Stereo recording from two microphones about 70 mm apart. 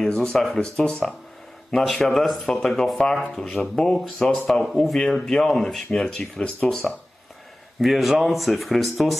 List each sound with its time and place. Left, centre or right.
0.0 s speech: centre